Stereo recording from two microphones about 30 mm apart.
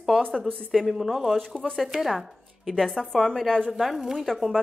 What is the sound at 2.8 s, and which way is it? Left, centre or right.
Speech, centre.